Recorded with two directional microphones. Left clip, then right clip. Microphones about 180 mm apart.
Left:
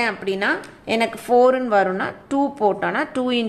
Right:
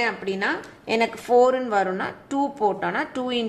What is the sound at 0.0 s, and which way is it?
A woman's voice, 20° left (ahead or behind).